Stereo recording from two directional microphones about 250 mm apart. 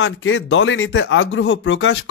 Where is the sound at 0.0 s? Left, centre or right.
Left.